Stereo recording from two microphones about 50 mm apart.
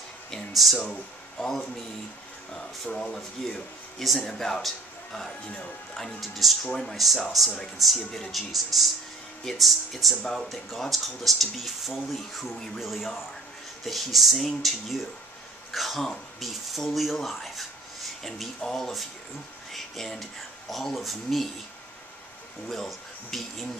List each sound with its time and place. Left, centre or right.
0.5 s speech: centre
1.4 s speech: centre
2.9 s speech: centre
3.4 s speech: centre
6.6 s speech: centre
7.3 s speech: centre
22.7 s speech: centre